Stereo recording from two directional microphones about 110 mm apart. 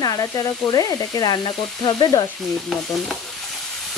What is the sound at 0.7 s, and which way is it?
Frying, 35° left (ahead or behind).